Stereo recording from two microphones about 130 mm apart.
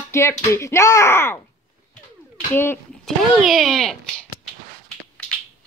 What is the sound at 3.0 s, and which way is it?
Speech, centre (ahead or behind).